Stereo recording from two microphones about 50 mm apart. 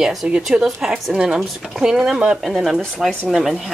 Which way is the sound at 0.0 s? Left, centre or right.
Centre.